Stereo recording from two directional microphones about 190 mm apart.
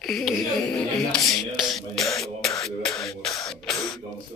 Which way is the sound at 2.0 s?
15° left (ahead or behind).